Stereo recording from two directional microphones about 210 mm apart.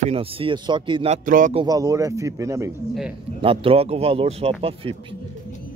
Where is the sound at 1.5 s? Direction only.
20° right (ahead or behind).